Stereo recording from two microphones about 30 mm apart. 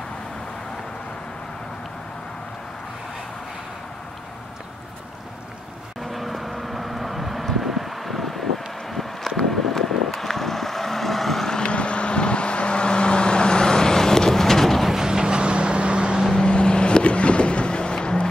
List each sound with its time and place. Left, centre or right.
6.1 s vehicle: centre
9.5 s vehicle: centre
11.4 s vehicle: left
11.7 s vehicle: left; by 14.8 s centre
15.0 s vehicle: right
16.4 s vehicle: left